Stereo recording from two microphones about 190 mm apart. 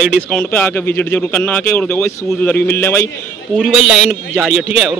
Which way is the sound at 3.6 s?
Centre (ahead or behind).